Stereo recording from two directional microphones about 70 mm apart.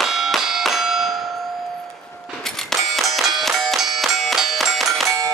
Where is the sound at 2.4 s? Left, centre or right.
Centre.